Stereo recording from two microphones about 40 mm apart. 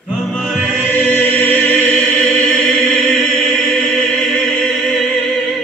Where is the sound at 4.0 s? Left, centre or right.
Centre.